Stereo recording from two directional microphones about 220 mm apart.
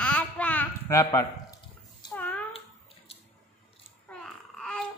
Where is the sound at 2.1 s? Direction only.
10° left (ahead or behind).